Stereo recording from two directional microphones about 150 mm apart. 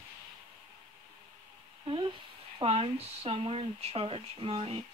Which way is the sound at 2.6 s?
40° right (ahead or behind).